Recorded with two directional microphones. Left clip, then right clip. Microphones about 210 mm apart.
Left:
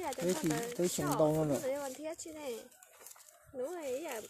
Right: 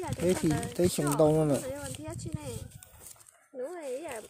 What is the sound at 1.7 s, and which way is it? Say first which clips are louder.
Speech: left 1 dB; 5° left (ahead or behind).